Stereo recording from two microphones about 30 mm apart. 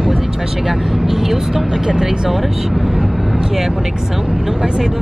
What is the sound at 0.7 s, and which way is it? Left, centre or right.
Speech, centre.